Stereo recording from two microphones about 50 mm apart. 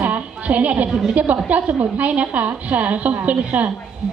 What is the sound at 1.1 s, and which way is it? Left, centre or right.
A woman's voice, right.